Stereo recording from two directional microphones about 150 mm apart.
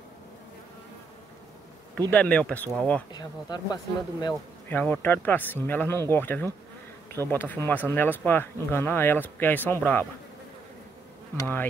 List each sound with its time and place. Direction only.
2.0 s speech: 10° left (ahead or behind)
3.1 s speech: 25° left (ahead or behind)
4.6 s speech: 10° left (ahead or behind)
11.3 s speech: 15° left (ahead or behind)